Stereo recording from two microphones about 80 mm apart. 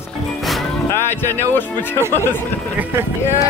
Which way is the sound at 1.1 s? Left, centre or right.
Left.